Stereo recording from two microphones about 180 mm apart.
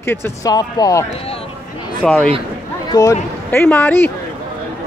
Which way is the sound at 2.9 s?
20° left (ahead or behind).